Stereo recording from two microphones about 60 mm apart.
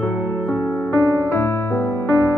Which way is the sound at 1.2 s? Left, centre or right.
Left.